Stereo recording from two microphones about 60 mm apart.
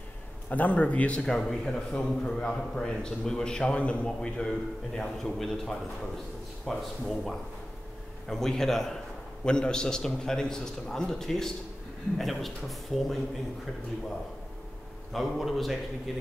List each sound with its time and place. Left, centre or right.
0.5 s speech: left
1.2 s a man's voice: centre
15.1 s a man's voice: centre